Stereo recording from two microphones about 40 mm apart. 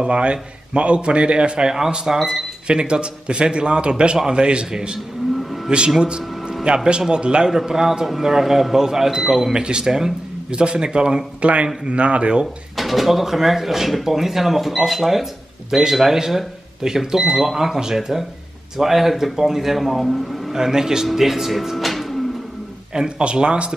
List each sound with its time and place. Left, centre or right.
0.0 s a man's voice: right
7.4 s speech: centre
9.5 s a man's voice: right
10.5 s a man's voice: right
12.7 s speech: centre
20.5 s speech: centre
22.9 s a man's voice: right